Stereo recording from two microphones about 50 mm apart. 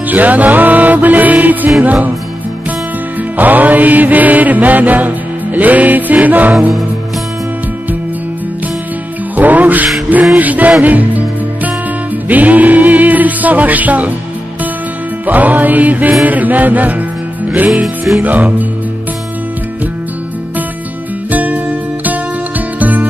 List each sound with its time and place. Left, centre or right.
0.1 s music: right
3.3 s music: right
9.4 s music: right
15.2 s music: right
18.2 s music: right
21.3 s music: right
22.8 s music: right